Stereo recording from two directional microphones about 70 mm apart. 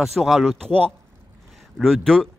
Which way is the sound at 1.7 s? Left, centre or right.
Centre.